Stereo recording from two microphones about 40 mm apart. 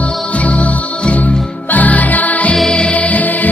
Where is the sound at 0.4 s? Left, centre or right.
Left.